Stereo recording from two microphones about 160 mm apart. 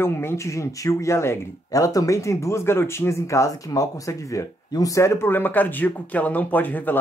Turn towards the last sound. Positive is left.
turn(degrees=10)  # may be behind; listen again after turning